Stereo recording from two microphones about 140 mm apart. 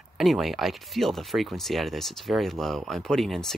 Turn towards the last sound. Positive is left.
turn(degrees=0)  # may be behind; listen again after turning